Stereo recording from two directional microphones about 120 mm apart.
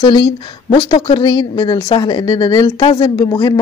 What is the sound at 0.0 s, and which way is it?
Speech, 40° left (ahead or behind).